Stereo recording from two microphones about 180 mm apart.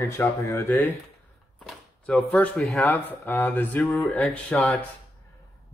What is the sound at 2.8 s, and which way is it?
Speech, 10° left (ahead or behind).